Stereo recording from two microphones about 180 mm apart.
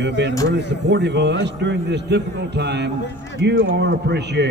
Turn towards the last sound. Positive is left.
turn(degrees=-70)  # may be behind; listen again after turning